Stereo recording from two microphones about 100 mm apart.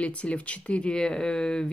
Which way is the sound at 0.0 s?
10° left (ahead or behind).